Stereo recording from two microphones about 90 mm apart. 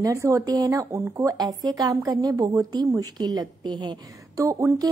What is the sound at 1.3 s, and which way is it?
A woman's voice, 45° right (ahead or behind).